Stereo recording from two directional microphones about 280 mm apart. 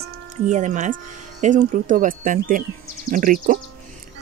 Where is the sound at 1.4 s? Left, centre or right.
Right.